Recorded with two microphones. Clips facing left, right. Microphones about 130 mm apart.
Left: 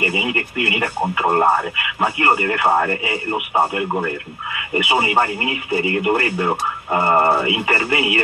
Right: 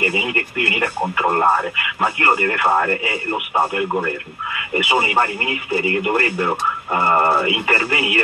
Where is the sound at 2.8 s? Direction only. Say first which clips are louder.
Even; 10° left (ahead or behind).